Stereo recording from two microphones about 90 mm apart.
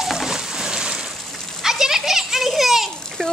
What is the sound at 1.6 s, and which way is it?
A child's voice, 5° right (ahead or behind).